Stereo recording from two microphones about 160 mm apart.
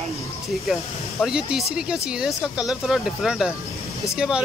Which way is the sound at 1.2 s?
5° right (ahead or behind).